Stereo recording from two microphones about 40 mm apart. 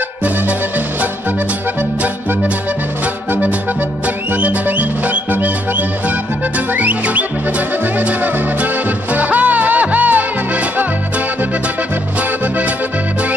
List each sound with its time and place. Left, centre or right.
4.3 s music: right